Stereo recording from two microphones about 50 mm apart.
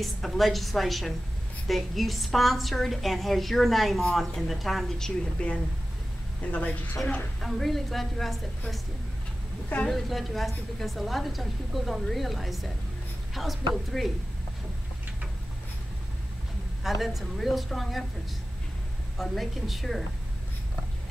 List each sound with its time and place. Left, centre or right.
0.0 s a woman's voice: centre
6.4 s a woman's voice: left
7.4 s a woman's voice: centre
9.8 s a woman's voice: centre
17.0 s a woman's voice: centre
19.1 s a woman's voice: centre